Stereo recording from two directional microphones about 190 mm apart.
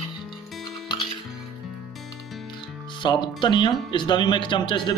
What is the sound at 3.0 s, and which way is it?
Speech, 25° left (ahead or behind).